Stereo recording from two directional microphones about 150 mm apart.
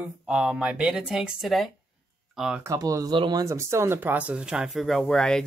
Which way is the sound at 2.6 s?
20° right (ahead or behind).